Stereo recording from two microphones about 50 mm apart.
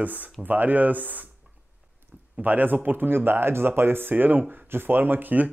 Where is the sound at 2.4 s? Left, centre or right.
Right.